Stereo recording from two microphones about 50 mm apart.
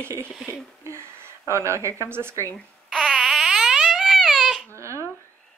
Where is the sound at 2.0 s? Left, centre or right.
Right.